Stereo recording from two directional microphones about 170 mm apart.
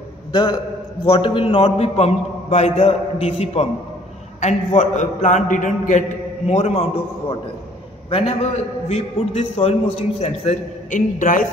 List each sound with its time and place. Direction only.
0.3 s a man's voice: 25° left (ahead or behind); by 6.9 s 40° left (ahead or behind)
8.1 s a man's voice: 35° left (ahead or behind); by 11.4 s 50° left (ahead or behind)